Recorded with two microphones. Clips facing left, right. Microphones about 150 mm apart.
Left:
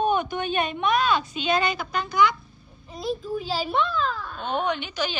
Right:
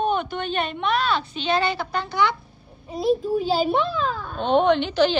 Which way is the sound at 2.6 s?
30° right (ahead or behind).